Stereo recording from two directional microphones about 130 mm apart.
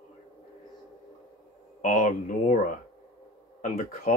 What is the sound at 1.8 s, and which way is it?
Speech, 70° left (ahead or behind).